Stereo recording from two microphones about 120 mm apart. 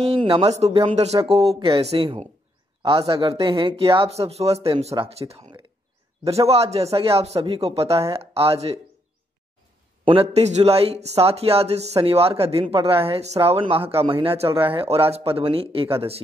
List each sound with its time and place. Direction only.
0.0 s speech: 50° right (ahead or behind)
5.2 s speech: 35° right (ahead or behind)
6.4 s speech: 55° right (ahead or behind)
10.0 s speech: 55° right (ahead or behind)